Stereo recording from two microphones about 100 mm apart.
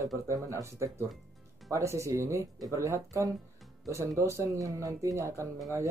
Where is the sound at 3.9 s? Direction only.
30° right (ahead or behind).